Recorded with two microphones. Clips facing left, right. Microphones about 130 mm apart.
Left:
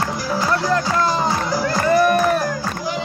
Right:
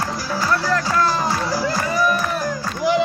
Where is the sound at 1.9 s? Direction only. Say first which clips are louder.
Left 7 dB; 60° left (ahead or behind).